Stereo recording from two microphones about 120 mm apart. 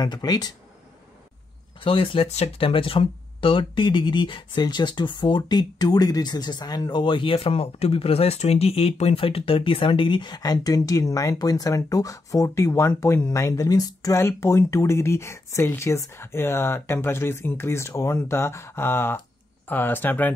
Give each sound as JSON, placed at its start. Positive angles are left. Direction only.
{"t": 0.0, "sound": "speech", "side_deg": 35}
{"t": 1.8, "sound": "speech", "side_deg": 50}